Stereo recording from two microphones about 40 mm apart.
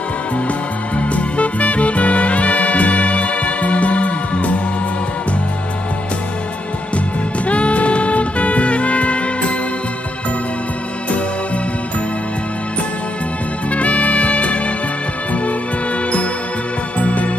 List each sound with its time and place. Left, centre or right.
0.9 s music: left
7.4 s music: left
13.7 s music: left
17.0 s music: left